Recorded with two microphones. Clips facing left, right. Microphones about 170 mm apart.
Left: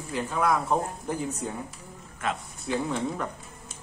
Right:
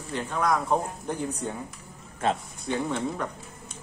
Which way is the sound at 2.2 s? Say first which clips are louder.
Right 5 dB; 30° right (ahead or behind).